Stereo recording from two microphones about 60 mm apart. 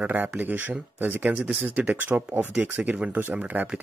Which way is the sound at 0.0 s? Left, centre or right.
Right.